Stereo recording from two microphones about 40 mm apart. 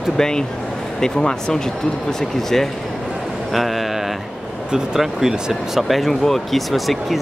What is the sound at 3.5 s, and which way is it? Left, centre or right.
Speech, centre.